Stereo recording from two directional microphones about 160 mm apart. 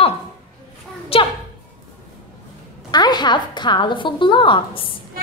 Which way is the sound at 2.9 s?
25° left (ahead or behind).